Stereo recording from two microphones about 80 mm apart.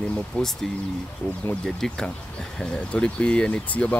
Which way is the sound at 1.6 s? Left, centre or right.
Centre.